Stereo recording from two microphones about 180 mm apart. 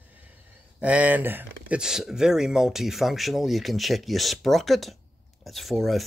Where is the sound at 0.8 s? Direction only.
5° right (ahead or behind).